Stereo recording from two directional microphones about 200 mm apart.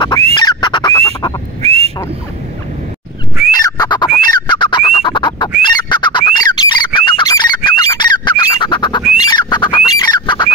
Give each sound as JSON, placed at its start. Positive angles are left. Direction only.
{"t": 0.3, "sound": "fowl", "side_deg": 20}
{"t": 1.6, "sound": "a sound", "side_deg": -30}
{"t": 3.5, "sound": "a sound", "side_deg": 20}
{"t": 4.2, "sound": "fowl", "side_deg": 25}
{"t": 7.9, "sound": "squawk", "side_deg": 20}
{"t": 9.2, "sound": "bird", "side_deg": 20}